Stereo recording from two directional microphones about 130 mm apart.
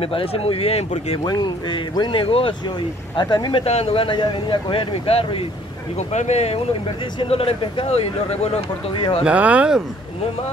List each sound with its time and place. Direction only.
0.0 s speech: 45° left (ahead or behind)
1.2 s speech: 35° left (ahead or behind)
3.6 s speech: 50° left (ahead or behind)
5.9 s speech: 60° left (ahead or behind)
9.2 s speech: 10° right (ahead or behind)